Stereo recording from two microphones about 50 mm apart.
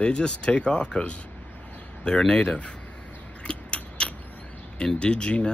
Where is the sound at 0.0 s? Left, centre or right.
Centre.